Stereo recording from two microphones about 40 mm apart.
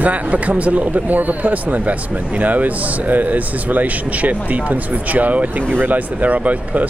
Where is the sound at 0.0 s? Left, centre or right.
Right.